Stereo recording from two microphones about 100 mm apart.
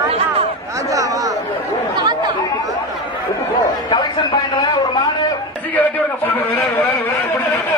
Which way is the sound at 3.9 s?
50° left (ahead or behind).